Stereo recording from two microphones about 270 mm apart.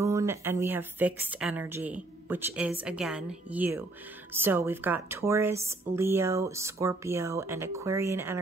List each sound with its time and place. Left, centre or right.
0.0 s speech: centre